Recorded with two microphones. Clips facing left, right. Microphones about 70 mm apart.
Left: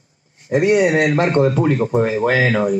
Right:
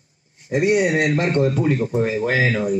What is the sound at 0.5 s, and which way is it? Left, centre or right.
A man's voice, left.